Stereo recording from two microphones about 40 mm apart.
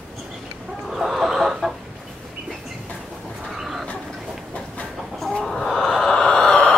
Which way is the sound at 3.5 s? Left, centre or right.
Centre.